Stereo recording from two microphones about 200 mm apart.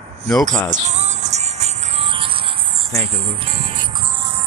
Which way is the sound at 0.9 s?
35° right (ahead or behind).